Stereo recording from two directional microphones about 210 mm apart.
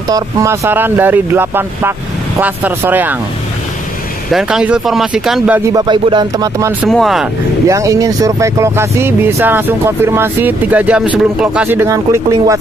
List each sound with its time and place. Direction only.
0.1 s speech: 15° right (ahead or behind)
4.3 s speech: centre (ahead or behind)
5.7 s speech: 20° right (ahead or behind)
6.8 s speech: centre (ahead or behind)
7.6 s speech: 15° right (ahead or behind)